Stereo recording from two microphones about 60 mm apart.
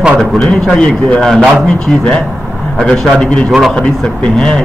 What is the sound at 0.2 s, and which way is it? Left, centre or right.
Speech, centre.